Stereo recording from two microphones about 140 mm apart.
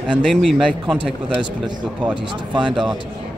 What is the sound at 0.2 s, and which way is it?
Speech, 5° left (ahead or behind).